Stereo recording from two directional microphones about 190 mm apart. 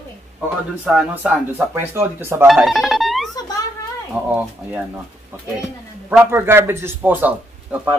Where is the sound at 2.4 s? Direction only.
Centre (ahead or behind).